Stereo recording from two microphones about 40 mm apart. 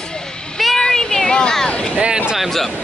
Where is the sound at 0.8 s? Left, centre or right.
Centre.